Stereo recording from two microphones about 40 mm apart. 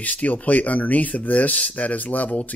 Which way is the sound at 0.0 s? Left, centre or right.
Left.